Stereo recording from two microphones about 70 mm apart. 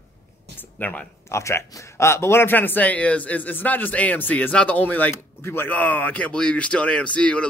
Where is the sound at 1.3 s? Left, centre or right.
Left.